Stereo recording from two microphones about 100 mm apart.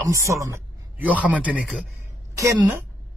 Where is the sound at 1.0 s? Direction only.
15° right (ahead or behind).